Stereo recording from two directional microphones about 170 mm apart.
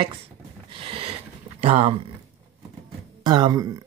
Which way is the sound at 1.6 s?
35° right (ahead or behind).